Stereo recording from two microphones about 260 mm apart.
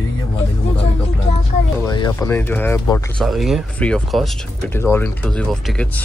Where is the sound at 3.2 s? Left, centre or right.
Centre.